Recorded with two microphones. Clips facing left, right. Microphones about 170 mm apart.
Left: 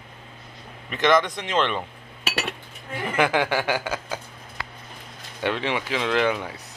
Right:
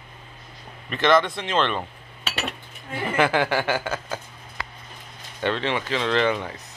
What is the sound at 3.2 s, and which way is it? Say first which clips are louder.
Speech: even; 15° left (ahead or behind).